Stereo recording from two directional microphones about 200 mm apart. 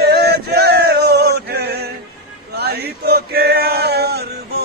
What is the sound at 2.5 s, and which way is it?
Male singing, 50° right (ahead or behind).